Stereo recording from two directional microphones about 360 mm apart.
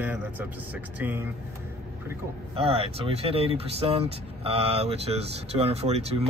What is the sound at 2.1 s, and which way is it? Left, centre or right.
Speech, centre.